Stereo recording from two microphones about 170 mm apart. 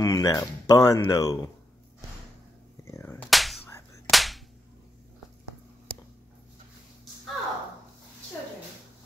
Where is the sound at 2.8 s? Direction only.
15° left (ahead or behind).